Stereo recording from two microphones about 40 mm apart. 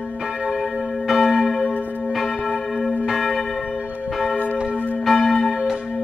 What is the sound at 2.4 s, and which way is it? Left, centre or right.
Church bell, centre.